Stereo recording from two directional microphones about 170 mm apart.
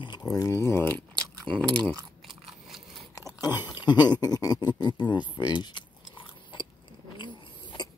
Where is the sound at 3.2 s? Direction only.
20° left (ahead or behind).